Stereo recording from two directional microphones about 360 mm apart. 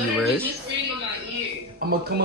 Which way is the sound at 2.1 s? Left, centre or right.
Right.